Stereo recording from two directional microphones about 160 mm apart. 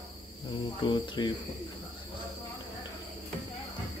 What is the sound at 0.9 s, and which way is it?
Speech, 30° left (ahead or behind).